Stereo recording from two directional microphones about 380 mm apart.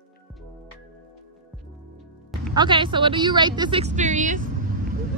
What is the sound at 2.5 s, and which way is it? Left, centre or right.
A woman's voice, centre.